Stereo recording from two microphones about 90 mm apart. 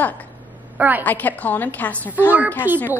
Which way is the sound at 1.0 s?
20° left (ahead or behind).